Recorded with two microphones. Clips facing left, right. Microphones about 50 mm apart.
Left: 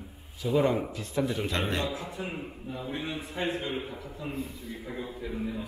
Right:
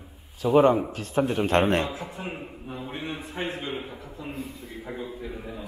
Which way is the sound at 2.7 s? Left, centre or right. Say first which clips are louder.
Even; right.